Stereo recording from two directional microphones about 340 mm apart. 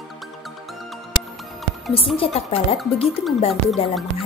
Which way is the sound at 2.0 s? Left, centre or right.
Centre.